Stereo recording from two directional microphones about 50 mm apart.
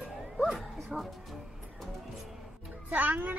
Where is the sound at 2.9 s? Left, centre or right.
Right.